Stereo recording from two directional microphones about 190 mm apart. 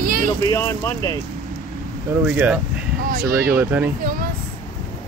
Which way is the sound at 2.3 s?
5° right (ahead or behind).